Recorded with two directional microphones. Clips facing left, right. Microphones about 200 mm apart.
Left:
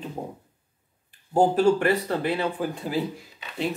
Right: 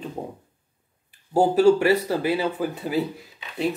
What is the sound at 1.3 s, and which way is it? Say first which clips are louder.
Speech: right 3 dB; 10° right (ahead or behind).